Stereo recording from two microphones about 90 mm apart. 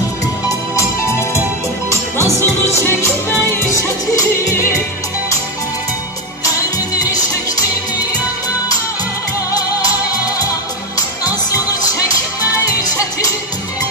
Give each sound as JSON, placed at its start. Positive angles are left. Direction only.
{"t": 0.5, "sound": "music", "side_deg": 35}
{"t": 7.0, "sound": "music", "side_deg": 40}
{"t": 12.8, "sound": "music", "side_deg": 40}